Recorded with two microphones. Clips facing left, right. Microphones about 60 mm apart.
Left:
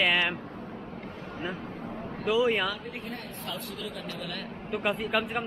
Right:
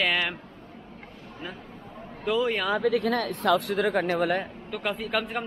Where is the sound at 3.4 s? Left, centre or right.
Right.